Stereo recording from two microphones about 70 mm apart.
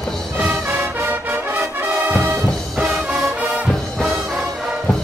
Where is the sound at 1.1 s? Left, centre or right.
Right.